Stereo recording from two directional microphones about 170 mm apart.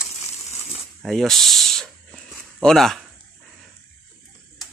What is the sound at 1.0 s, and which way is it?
Snake, centre (ahead or behind).